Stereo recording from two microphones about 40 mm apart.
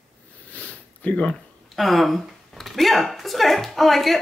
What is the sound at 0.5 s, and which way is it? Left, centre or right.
Sniff, left.